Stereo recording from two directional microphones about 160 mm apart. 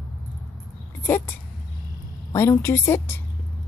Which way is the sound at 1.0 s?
15° left (ahead or behind).